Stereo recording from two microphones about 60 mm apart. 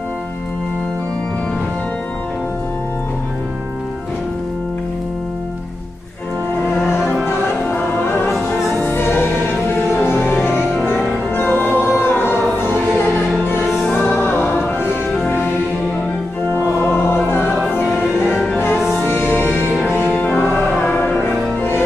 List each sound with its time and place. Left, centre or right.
7.2 s music: left
10.4 s music: centre
11.3 s choir: left
13.7 s music: centre
14.0 s music: left
16.5 s music: left
19.0 s music: left
19.7 s music: centre
20.2 s music: left